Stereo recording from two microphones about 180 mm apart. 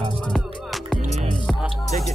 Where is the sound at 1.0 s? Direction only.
40° right (ahead or behind).